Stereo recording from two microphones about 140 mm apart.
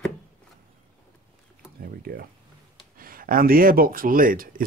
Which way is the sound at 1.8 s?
90° right.